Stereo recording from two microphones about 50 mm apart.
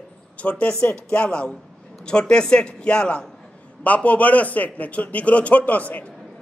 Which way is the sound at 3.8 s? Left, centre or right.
Left.